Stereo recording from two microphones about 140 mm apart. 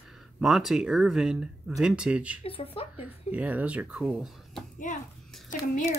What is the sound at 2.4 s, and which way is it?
Speech, 45° left (ahead or behind).